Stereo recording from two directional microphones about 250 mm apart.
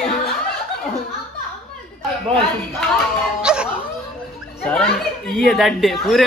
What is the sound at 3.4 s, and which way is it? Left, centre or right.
Speech, centre.